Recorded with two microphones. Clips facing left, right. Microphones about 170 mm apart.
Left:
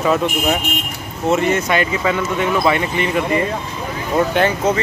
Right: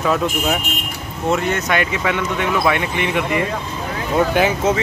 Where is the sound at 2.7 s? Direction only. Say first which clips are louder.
Left 2 dB; 65° right (ahead or behind).